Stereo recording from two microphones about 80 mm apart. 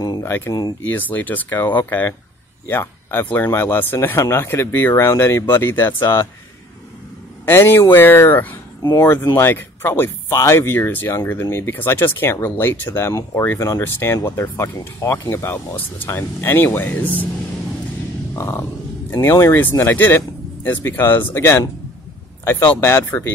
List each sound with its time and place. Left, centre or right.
0.2 s a sound: left
0.5 s speech: left
0.8 s speech: left
7.4 s speech: left
18.3 s a sound: left
20.0 s speech: left